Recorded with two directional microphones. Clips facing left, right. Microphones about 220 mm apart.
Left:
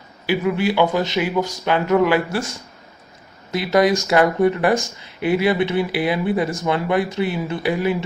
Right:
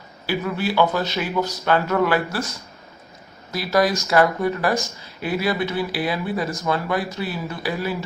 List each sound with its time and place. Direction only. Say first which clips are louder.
0.3 s speech: left 5 dB; 15° left (ahead or behind)
3.5 s speech: left 3 dB; 20° left (ahead or behind)